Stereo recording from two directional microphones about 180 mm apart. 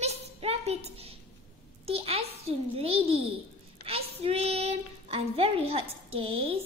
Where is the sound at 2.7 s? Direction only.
30° right (ahead or behind).